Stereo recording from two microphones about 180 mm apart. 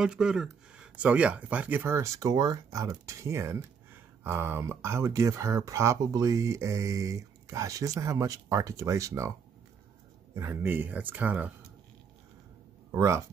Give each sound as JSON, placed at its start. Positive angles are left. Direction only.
{"t": 0.0, "sound": "speech", "side_deg": -5}
{"t": 10.3, "sound": "speech", "side_deg": -15}
{"t": 12.9, "sound": "speech", "side_deg": -15}